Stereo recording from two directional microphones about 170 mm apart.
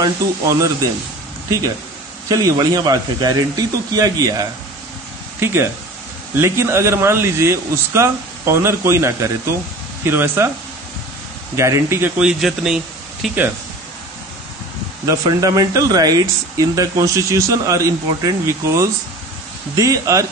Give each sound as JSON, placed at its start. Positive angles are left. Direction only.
{"t": 0.0, "sound": "speech", "side_deg": -20}
{"t": 2.2, "sound": "speech", "side_deg": -20}
{"t": 11.5, "sound": "speech", "side_deg": -15}
{"t": 12.2, "sound": "speech", "side_deg": -5}
{"t": 15.0, "sound": "speech", "side_deg": -20}